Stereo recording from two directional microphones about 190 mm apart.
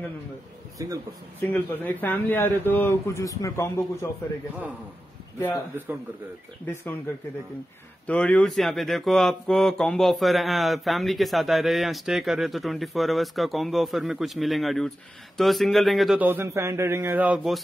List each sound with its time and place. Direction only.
0.8 s a man's voice: 15° right (ahead or behind)
1.5 s a man's voice: 10° left (ahead or behind)
6.7 s a man's voice: 10° left (ahead or behind)
8.1 s a man's voice: 5° left (ahead or behind)